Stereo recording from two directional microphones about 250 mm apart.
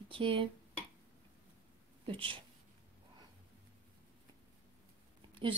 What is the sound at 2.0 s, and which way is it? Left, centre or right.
Speech, right.